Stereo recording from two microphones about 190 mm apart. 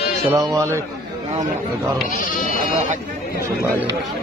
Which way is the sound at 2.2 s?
45° left (ahead or behind).